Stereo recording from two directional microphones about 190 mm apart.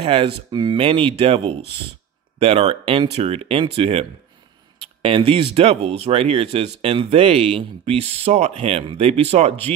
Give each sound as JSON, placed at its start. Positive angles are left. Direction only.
{"t": 0.0, "sound": "speech", "side_deg": -30}